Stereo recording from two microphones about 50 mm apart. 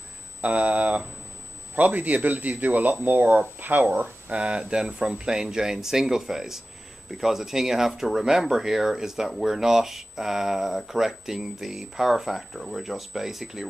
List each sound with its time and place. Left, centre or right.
0.4 s speech: right
4.4 s speech: right